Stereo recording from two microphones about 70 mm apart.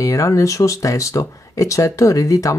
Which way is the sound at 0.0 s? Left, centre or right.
Left.